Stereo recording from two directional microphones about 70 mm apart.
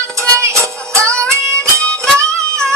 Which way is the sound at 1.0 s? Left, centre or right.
Centre.